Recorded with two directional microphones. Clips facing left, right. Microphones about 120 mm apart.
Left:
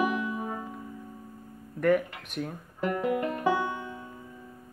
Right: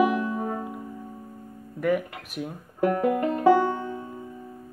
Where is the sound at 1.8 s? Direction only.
5° right (ahead or behind).